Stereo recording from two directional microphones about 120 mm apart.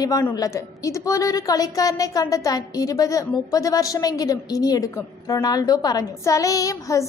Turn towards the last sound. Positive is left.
turn(degrees=25)  # may be behind; listen again after turning